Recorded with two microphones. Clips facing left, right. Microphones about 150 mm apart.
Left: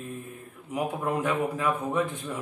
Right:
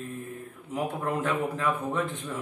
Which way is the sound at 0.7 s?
10° left (ahead or behind).